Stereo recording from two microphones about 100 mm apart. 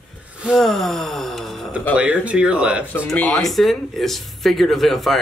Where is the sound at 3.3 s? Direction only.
Centre (ahead or behind).